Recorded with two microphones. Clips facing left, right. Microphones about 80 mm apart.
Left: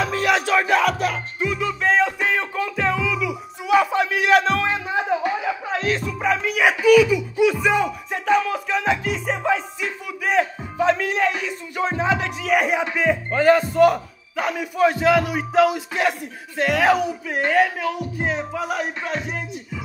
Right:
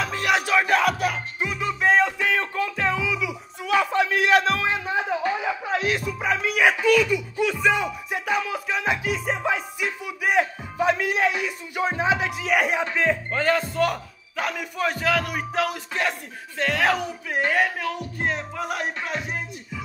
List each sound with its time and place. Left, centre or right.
0.0 s music: centre
1.4 s music: centre
1.8 s music: centre
2.1 s a sound: centre
2.5 s music: centre
5.4 s music: centre
9.8 s a sound: centre
10.8 s music: centre
12.9 s speech: centre
17.4 s music: centre